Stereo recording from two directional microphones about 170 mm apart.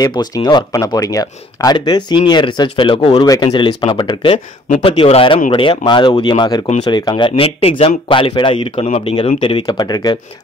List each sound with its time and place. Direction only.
0.0 s a man's voice: 25° left (ahead or behind)